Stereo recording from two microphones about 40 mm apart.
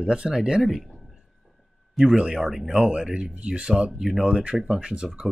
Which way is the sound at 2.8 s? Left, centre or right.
Right.